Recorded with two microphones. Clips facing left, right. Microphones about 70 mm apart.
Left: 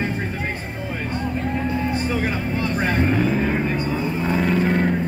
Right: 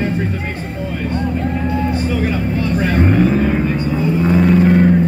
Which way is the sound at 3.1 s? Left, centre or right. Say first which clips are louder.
Right 6 dB; centre.